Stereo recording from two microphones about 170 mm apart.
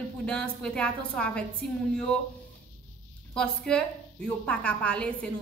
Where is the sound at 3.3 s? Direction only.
5° left (ahead or behind).